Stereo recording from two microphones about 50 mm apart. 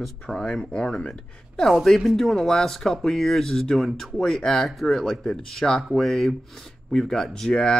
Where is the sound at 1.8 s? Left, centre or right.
Centre.